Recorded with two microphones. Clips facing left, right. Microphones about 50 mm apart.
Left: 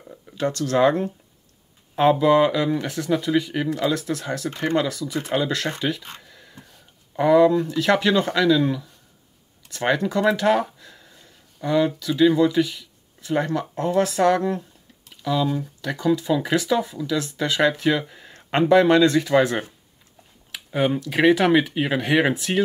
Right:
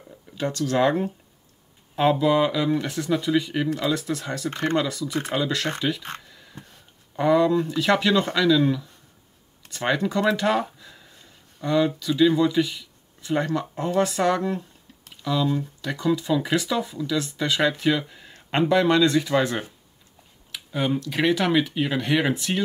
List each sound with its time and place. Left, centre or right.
0.4 s speech: centre
4.6 s speech: centre
6.2 s a sound: centre
7.2 s speech: centre
9.8 s speech: centre
15.8 s speech: centre
19.2 s speech: centre